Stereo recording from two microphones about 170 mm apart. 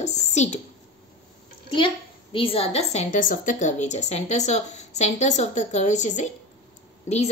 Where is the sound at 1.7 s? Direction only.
30° left (ahead or behind).